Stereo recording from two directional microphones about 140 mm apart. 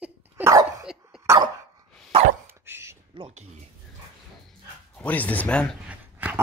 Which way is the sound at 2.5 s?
15° right (ahead or behind).